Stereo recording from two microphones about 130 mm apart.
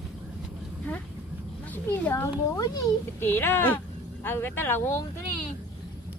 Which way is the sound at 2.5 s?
30° left (ahead or behind).